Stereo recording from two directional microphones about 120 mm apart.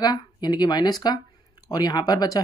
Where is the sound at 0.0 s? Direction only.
35° left (ahead or behind).